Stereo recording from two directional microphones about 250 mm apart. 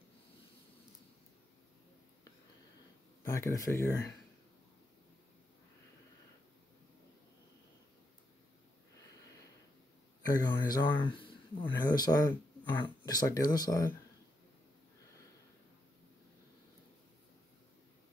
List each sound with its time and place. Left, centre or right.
3.3 s speech: centre
10.2 s speech: centre